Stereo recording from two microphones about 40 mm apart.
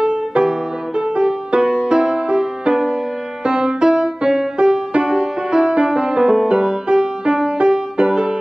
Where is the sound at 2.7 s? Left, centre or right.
Centre.